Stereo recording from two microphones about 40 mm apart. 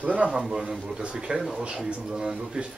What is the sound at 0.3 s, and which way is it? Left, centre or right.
Speech, centre.